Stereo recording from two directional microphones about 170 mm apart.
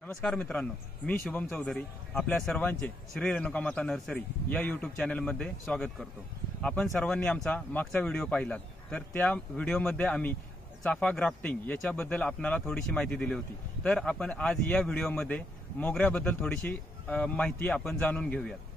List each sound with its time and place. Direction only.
0.2 s speech: 5° left (ahead or behind)